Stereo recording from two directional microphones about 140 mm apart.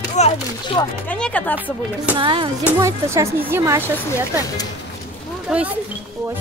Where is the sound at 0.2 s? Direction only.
55° left (ahead or behind).